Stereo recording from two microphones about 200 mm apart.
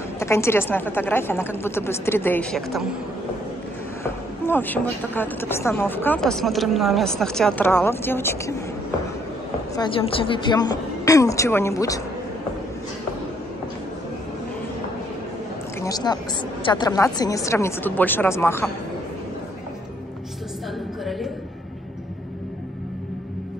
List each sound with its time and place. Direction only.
0.2 s a woman's voice: 15° left (ahead or behind)
4.0 s a woman's voice: 10° left (ahead or behind)
9.8 s a woman's voice: 25° left (ahead or behind)
15.8 s a woman's voice: 20° left (ahead or behind)
21.0 s music: centre (ahead or behind)